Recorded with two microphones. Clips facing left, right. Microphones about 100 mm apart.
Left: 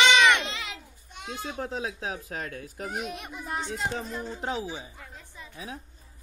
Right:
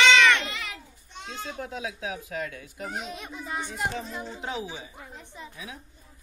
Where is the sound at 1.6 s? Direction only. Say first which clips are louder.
Left 2 dB; 35° left (ahead or behind).